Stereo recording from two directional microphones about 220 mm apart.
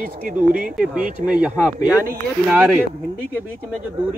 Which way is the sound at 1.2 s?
5° right (ahead or behind).